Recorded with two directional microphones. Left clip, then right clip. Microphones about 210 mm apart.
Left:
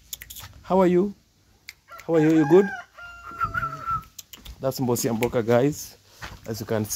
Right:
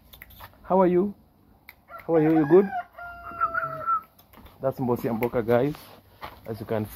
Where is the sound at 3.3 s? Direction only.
45° left (ahead or behind).